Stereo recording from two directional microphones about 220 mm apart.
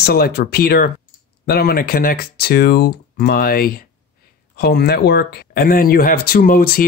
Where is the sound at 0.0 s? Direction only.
45° left (ahead or behind).